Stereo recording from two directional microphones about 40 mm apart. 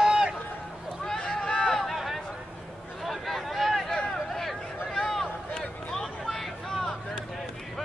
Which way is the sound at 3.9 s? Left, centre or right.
Centre.